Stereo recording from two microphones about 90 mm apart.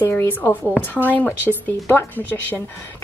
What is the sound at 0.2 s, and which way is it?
A woman's voice, 20° left (ahead or behind).